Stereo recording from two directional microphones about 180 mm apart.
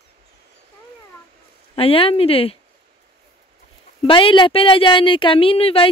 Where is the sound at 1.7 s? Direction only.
30° left (ahead or behind).